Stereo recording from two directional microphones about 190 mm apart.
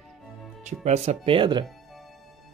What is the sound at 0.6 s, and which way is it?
Speech, 35° right (ahead or behind).